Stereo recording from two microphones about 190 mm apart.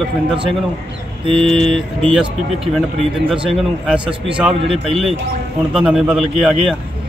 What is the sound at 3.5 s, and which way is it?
Speech, 5° right (ahead or behind).